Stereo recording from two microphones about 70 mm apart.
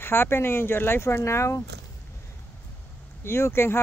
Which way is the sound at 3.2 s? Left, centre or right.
Left.